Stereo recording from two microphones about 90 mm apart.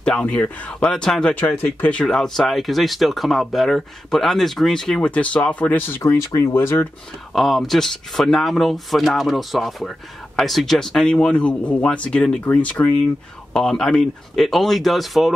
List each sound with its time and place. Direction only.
0.0 s speech: 10° left (ahead or behind)
1.4 s speech: 20° left (ahead or behind)
2.0 s speech: 5° left (ahead or behind); by 6.9 s 30° left (ahead or behind)
7.3 s speech: centre (ahead or behind); by 12.9 s 20° left (ahead or behind)
13.5 s speech: 5° left (ahead or behind)